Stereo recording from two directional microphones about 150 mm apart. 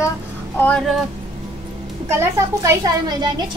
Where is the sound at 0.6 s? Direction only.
5° left (ahead or behind).